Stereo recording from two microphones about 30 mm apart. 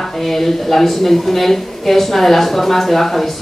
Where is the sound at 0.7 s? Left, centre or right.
Centre.